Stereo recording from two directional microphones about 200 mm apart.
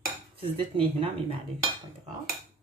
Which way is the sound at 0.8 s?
25° right (ahead or behind).